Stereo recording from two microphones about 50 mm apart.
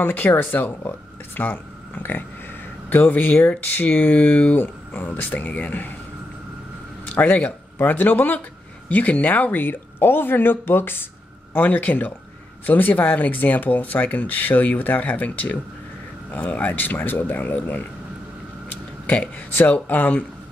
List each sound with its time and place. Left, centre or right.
0.0 s speech: left
7.2 s a woman's voice: left
11.5 s speech: left
19.5 s speech: left